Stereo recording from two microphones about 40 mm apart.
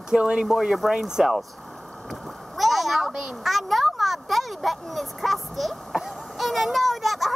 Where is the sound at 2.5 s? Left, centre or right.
Centre.